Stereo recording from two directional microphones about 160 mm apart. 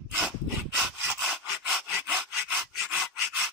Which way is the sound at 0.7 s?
5° right (ahead or behind).